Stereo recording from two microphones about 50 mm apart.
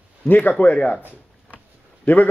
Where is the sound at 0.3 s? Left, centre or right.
Left.